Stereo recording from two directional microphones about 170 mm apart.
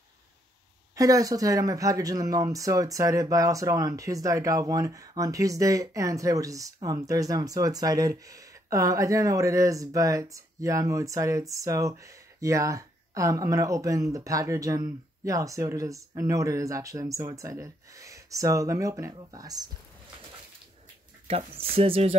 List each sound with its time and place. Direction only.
0.9 s speech: 20° right (ahead or behind)
21.5 s speech: 35° right (ahead or behind)